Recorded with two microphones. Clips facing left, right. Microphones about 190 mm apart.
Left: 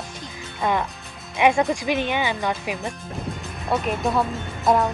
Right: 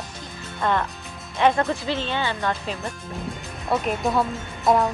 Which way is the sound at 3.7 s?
Centre (ahead or behind).